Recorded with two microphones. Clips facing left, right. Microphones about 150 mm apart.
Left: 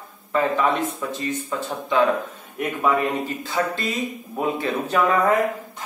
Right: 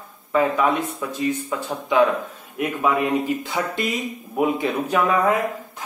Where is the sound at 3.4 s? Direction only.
15° right (ahead or behind).